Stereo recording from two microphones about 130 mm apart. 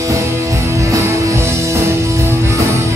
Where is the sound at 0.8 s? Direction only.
20° right (ahead or behind).